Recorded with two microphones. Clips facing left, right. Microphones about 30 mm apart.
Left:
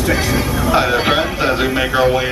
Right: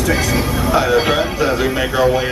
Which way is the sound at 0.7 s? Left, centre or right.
Left.